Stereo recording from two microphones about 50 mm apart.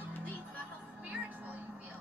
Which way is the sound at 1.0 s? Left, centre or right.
Right.